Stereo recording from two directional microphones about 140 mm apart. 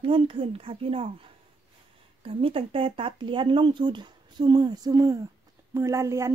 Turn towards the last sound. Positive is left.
turn(degrees=-20)  # may be behind; listen again after turning